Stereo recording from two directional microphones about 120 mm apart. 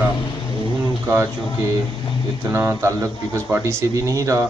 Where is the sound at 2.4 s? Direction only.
20° right (ahead or behind).